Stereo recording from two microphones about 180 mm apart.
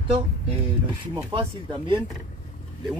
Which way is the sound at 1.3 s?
30° right (ahead or behind).